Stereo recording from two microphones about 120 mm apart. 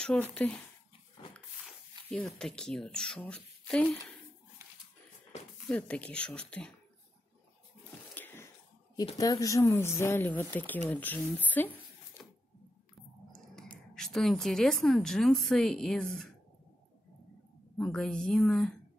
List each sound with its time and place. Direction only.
0.3 s speech: 10° left (ahead or behind)
2.2 s speech: 5° left (ahead or behind)
5.7 s speech: 10° left (ahead or behind)
8.1 s a sound: 15° left (ahead or behind)
9.2 s speech: 30° left (ahead or behind)
12.2 s a sound: 20° left (ahead or behind)
13.3 s a woman's voice: 5° left (ahead or behind)
17.7 s a woman's voice: 5° left (ahead or behind)